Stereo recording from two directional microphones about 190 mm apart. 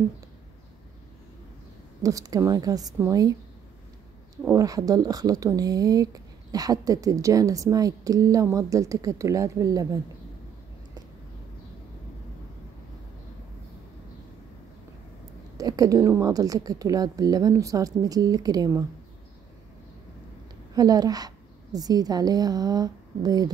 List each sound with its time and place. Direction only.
2.0 s speech: 20° right (ahead or behind)
4.5 s speech: 20° right (ahead or behind)
15.5 s speech: 20° right (ahead or behind)
20.7 s speech: 20° right (ahead or behind)